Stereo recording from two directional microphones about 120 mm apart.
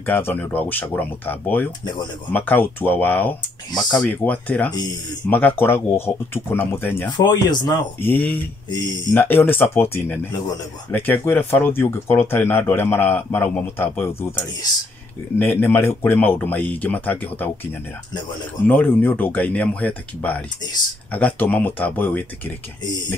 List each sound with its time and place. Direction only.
0.0 s speech: 15° left (ahead or behind)
7.1 s speech: 35° left (ahead or behind)
8.0 s speech: 15° left (ahead or behind)
15.3 s speech: 15° left (ahead or behind)
18.7 s speech: 15° left (ahead or behind)